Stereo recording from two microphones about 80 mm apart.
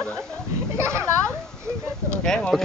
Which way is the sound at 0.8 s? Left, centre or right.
Right.